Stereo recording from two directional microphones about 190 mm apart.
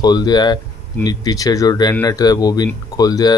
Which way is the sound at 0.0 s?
20° left (ahead or behind).